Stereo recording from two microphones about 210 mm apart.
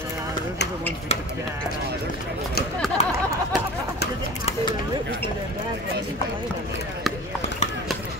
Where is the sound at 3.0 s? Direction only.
30° left (ahead or behind).